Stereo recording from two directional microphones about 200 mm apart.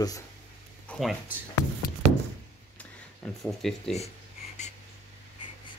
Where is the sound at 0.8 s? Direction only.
5° left (ahead or behind).